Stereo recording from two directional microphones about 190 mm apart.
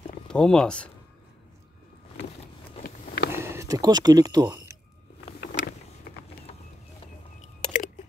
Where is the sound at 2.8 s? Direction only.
55° left (ahead or behind).